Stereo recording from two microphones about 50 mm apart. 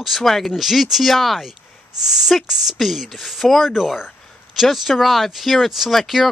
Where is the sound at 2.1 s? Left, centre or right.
Centre.